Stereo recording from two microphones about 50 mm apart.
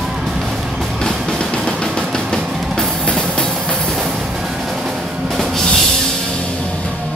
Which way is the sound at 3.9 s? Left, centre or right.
Centre.